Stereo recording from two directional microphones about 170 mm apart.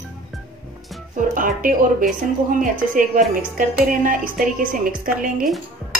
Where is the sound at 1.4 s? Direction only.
55° right (ahead or behind).